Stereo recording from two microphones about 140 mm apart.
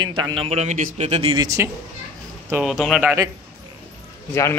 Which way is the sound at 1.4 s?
25° right (ahead or behind).